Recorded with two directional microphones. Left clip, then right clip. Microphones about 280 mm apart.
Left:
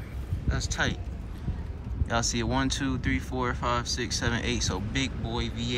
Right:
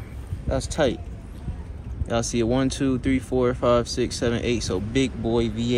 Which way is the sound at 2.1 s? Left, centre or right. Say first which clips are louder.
Right 5 dB; centre.